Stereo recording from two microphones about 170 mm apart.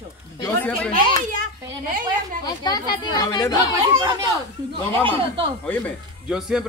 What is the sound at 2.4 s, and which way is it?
Speech, 25° left (ahead or behind).